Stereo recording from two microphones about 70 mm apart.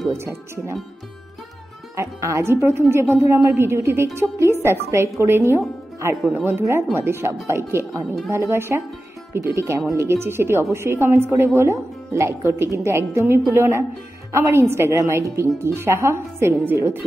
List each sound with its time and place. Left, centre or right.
0.2 s a woman's voice: right
2.0 s a woman's voice: right
6.6 s a woman's voice: right